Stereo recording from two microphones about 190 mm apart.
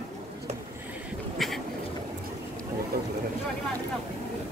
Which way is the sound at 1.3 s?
Centre (ahead or behind).